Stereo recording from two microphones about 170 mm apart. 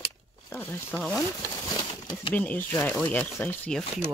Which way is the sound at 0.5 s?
10° left (ahead or behind).